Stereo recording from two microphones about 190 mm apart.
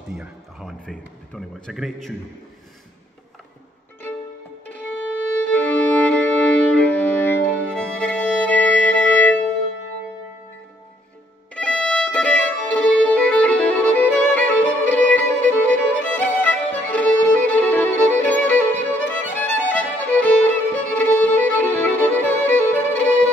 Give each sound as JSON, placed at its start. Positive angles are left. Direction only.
{"t": 0.1, "sound": "speech", "side_deg": -5}
{"t": 4.6, "sound": "violin", "side_deg": 10}
{"t": 7.7, "sound": "music", "side_deg": 5}
{"t": 11.5, "sound": "violin", "side_deg": 5}